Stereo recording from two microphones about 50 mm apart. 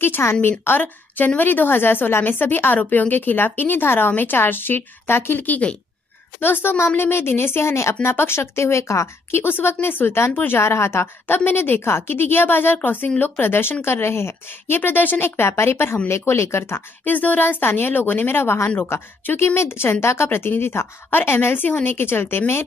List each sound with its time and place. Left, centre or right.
0.4 s a woman's voice: left
5.4 s speech: left
6.4 s a woman's voice: left
9.3 s a woman's voice: left
14.8 s speech: left
15.2 s a woman's voice: left
16.1 s a woman's voice: left
17.0 s a woman's voice: left
19.4 s a woman's voice: left
21.1 s a woman's voice: left